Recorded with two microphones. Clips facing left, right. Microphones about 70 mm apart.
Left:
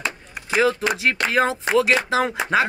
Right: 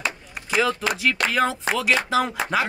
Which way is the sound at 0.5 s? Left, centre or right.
Left.